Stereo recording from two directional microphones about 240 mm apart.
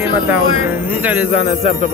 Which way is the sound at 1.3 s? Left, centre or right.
Left.